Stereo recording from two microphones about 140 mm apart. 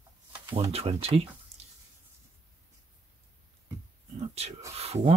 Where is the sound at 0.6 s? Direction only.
45° right (ahead or behind).